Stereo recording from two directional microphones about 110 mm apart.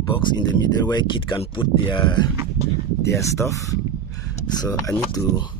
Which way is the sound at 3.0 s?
25° left (ahead or behind).